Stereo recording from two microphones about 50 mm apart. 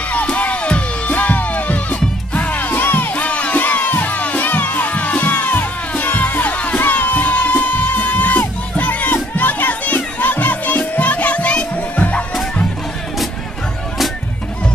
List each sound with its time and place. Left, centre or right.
0.1 s music: left
3.1 s music: left
6.8 s music: left